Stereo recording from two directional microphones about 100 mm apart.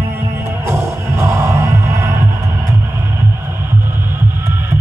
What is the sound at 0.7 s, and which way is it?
Music, 30° right (ahead or behind).